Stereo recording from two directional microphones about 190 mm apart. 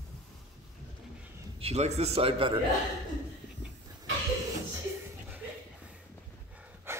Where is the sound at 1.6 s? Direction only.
35° right (ahead or behind).